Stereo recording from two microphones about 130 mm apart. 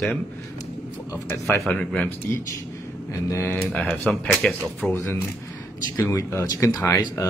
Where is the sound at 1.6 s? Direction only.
10° left (ahead or behind).